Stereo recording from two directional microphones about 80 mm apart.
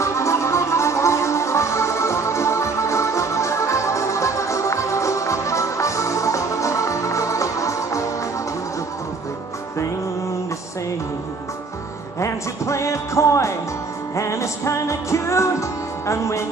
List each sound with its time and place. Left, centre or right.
0.0 s music: left
12.2 s music: left